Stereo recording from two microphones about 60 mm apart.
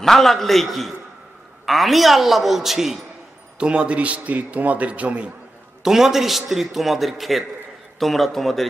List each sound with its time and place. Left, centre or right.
0.0 s a man's voice: centre
3.5 s a man's voice: centre
5.8 s a man's voice: centre